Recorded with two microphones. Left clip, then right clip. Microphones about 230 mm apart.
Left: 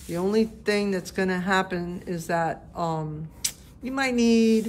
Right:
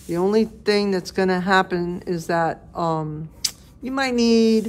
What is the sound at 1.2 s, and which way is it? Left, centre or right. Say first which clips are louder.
Speech: right 6 dB; centre.